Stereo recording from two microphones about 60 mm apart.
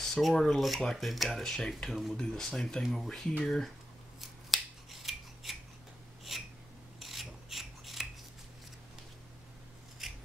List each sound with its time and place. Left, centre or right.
0.0 s rub: centre
0.9 s speech: centre
2.1 s rub: centre
2.8 s speech: centre
3.1 s rub: centre
3.4 s speech: centre
4.2 s scissors: centre
6.3 s a sound: centre
7.0 s filing: centre
10.0 s filing: centre